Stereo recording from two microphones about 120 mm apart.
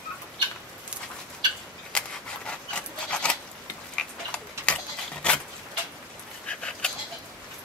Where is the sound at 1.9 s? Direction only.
10° left (ahead or behind).